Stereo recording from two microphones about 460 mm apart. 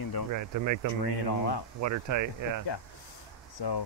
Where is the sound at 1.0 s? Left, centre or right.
Left.